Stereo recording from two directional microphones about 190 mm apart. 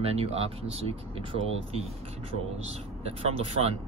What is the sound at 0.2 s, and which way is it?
Speech, 30° right (ahead or behind).